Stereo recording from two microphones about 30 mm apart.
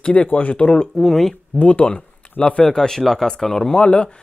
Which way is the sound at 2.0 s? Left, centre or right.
Left.